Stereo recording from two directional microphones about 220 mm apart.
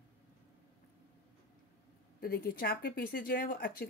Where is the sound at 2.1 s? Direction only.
45° left (ahead or behind).